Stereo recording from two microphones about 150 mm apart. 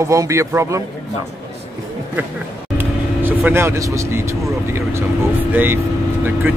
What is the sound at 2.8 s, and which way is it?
Speech, 15° right (ahead or behind).